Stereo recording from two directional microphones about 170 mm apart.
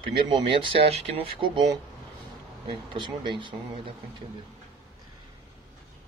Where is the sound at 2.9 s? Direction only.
30° right (ahead or behind).